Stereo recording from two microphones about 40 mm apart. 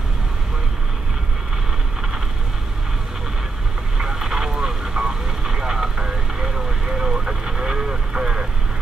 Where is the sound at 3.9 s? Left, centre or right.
Centre.